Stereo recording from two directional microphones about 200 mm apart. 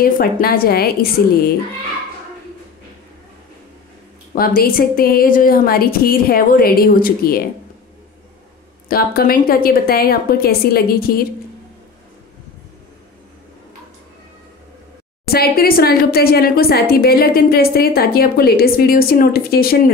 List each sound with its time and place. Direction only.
0.0 s a woman's voice: 50° left (ahead or behind)
4.4 s a woman's voice: 45° left (ahead or behind)
8.8 s a woman's voice: 50° left (ahead or behind)
15.2 s a woman's voice: 50° left (ahead or behind)